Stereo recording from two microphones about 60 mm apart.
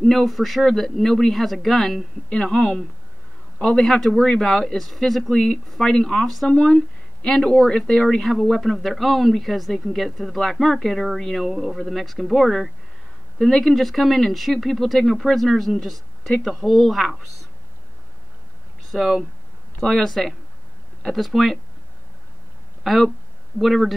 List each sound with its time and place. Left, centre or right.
0.0 s speech: centre
2.2 s speech: centre
18.9 s speech: centre
22.8 s speech: centre